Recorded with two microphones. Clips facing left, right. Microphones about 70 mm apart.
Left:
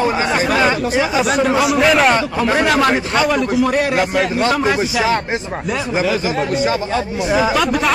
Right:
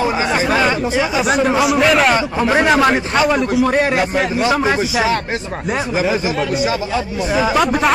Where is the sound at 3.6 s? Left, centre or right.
Right.